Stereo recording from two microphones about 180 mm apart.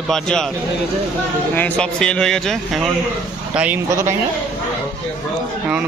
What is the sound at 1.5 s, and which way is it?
A man's voice, 5° left (ahead or behind).